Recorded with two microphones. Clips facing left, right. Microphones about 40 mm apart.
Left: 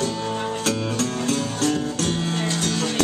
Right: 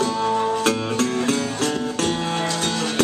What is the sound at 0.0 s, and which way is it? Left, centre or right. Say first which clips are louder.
Music: right 5 dB; right.